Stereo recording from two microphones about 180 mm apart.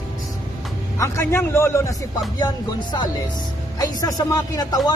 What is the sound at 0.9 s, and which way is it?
A man's voice, 15° left (ahead or behind).